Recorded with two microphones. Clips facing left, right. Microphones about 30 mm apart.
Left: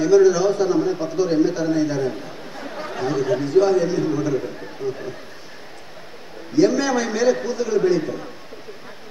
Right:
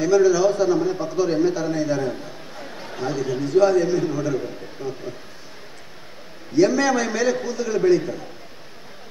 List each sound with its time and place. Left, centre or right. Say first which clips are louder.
0.0 s a man's voice: left 2 dB; centre
2.7 s chatter: left 8 dB; left
3.0 s a man's voice: left 3 dB; centre
6.5 s a man's voice: even; centre